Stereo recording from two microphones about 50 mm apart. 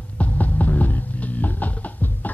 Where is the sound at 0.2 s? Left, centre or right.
Left.